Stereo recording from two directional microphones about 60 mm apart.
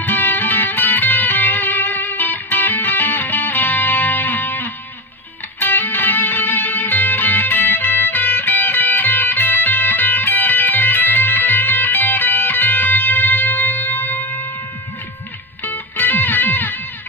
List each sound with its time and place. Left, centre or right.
0.0 s music: left
15.6 s music: left